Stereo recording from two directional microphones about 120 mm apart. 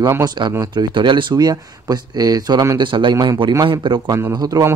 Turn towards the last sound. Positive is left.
turn(degrees=-30)  # may be behind; listen again after turning